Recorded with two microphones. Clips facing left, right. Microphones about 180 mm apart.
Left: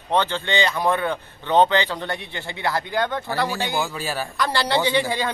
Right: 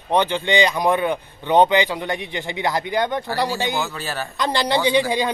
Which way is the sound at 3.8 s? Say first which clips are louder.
Left 1 dB; 10° left (ahead or behind).